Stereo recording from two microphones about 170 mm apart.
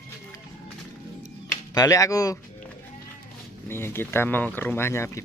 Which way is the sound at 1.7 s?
20° left (ahead or behind).